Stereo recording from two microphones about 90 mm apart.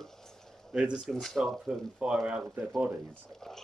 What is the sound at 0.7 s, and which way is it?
Speech, 10° right (ahead or behind).